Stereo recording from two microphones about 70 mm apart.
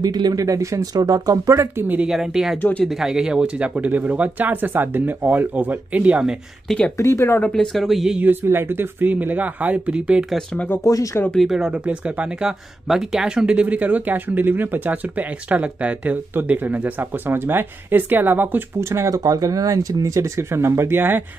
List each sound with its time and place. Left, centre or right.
0.0 s speech: right
0.9 s speech: right
2.0 s speech: centre
7.0 s speech: left
7.3 s speech: centre
8.2 s speech: right
10.5 s speech: left
10.8 s speech: left
11.3 s speech: centre; by 18.6 s right
18.8 s speech: right
20.3 s speech: right